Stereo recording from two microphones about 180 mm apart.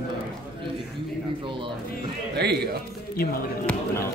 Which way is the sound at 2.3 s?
65° right (ahead or behind).